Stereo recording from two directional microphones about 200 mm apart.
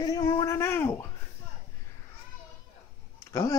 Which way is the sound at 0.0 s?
20° left (ahead or behind).